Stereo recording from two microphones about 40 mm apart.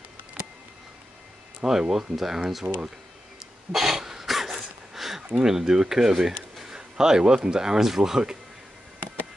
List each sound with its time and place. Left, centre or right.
1.6 s speech: centre
2.6 s speech: right
3.7 s a sound: centre